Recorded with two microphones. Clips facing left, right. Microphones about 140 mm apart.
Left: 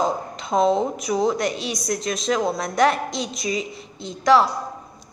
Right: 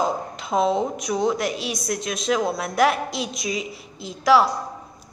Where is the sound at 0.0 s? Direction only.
Centre (ahead or behind).